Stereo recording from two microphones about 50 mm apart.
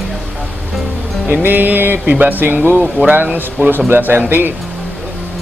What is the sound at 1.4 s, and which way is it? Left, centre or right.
Speech, right.